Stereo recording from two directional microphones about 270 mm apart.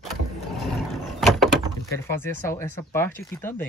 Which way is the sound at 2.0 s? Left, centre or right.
Centre.